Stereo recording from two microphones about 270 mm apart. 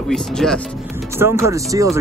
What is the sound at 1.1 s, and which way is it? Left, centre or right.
Speech, centre.